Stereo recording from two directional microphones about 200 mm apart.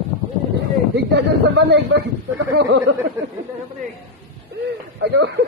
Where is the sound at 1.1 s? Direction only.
60° right (ahead or behind); by 2.9 s 75° right (ahead or behind).